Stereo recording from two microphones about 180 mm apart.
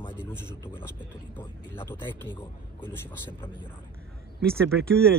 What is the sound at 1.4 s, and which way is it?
Speech, 10° left (ahead or behind).